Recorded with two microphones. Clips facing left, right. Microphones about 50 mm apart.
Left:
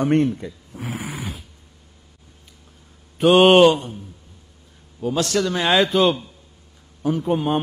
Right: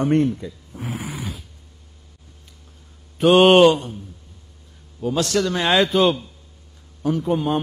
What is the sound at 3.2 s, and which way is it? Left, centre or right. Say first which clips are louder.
Speech: even; centre.